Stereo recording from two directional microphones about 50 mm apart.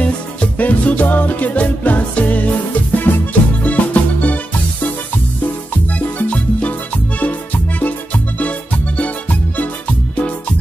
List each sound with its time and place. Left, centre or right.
0.0 s music: left
5.9 s music: left